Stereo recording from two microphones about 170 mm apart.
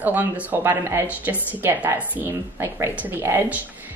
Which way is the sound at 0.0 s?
10° right (ahead or behind).